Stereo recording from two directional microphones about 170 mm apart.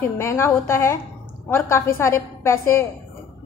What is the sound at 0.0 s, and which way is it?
Speech, 15° left (ahead or behind).